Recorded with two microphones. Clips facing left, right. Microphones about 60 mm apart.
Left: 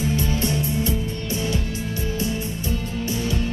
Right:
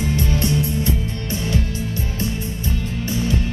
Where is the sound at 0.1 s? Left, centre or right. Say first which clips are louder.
Right 2 dB; right.